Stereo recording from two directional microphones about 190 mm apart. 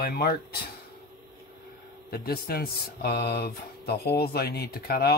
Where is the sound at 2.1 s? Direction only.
55° left (ahead or behind).